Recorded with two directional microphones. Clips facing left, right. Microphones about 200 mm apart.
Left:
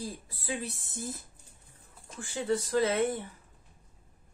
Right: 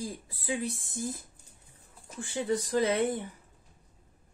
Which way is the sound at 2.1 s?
15° right (ahead or behind).